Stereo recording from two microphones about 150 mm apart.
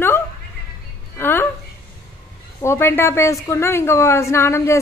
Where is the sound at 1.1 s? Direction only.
15° left (ahead or behind).